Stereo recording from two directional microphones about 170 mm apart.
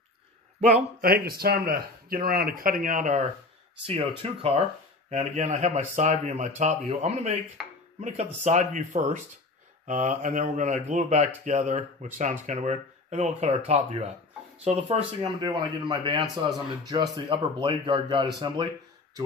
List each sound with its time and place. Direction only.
0.6 s a man's voice: 40° right (ahead or behind)
1.0 s speech: 60° right (ahead or behind)
3.8 s speech: 35° right (ahead or behind)
7.6 s chopping: 5° right (ahead or behind)
8.5 s speech: 45° right (ahead or behind)
14.6 s speech: 35° right (ahead or behind)
15.4 s a man's voice: 25° right (ahead or behind)